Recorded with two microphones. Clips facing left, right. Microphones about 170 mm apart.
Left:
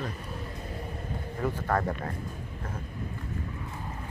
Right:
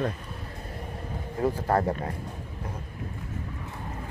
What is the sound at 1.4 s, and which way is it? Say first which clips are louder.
Speech: right 4 dB; 30° right (ahead or behind).